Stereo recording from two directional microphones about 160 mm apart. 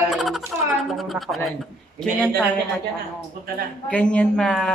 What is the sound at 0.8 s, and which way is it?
A woman's voice, centre (ahead or behind).